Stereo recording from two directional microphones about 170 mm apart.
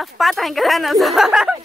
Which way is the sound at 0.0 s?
Centre (ahead or behind).